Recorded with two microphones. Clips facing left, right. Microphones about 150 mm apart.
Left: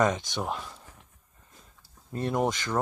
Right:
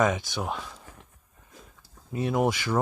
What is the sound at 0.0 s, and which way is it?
Speech, 5° right (ahead or behind).